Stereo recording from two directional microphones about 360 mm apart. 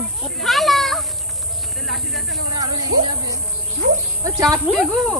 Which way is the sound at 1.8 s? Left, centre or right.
Centre.